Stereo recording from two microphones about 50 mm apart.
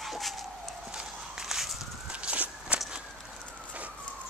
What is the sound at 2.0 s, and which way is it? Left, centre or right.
Walk, right.